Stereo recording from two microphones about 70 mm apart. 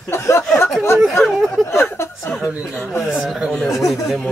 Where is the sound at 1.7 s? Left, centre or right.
Left.